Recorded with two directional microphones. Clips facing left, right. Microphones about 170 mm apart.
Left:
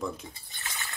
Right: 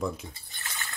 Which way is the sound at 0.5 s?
20° left (ahead or behind).